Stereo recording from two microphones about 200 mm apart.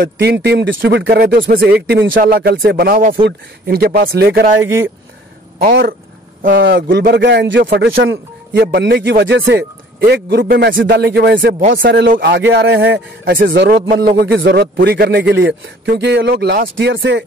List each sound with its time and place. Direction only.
0.0 s speech: 55° right (ahead or behind)
5.6 s a man's voice: 50° right (ahead or behind); by 8.2 s 75° right (ahead or behind)
8.5 s a man's voice: 55° right (ahead or behind)
10.0 s a man's voice: 55° right (ahead or behind)
13.8 s speech: 45° right (ahead or behind)
14.2 s a man's voice: 60° right (ahead or behind)
15.3 s a man's voice: 65° right (ahead or behind)